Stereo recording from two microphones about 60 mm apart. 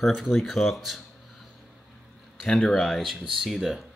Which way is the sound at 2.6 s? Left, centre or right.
Centre.